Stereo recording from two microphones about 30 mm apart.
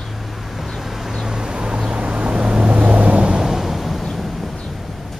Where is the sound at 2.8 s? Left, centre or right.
Right.